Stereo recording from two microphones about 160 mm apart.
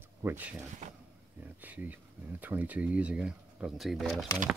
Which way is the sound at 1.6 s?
10° right (ahead or behind).